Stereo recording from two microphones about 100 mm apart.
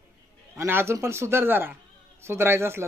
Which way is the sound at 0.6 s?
25° right (ahead or behind).